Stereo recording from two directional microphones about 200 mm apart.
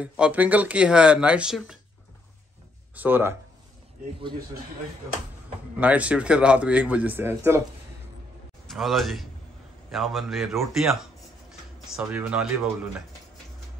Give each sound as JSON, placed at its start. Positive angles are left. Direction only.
{"t": 0.0, "sound": "speech", "side_deg": -5}
{"t": 3.0, "sound": "speech", "side_deg": -10}
{"t": 5.8, "sound": "speech", "side_deg": -5}
{"t": 8.6, "sound": "a man's voice", "side_deg": 0}